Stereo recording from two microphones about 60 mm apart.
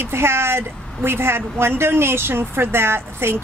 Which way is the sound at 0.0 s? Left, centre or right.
Right.